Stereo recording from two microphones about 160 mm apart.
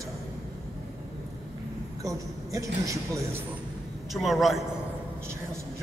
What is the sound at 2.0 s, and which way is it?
A man's voice, 20° right (ahead or behind).